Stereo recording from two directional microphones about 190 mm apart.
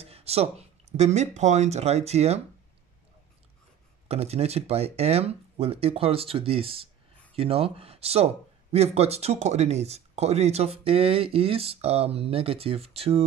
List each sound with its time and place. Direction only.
0.0 s speech: 30° right (ahead or behind)
4.1 s speech: 35° right (ahead or behind)